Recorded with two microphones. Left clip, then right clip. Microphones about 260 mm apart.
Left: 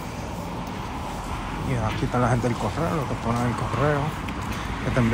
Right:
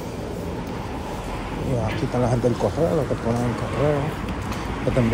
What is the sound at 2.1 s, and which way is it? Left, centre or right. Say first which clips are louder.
Speech: right 2 dB; left.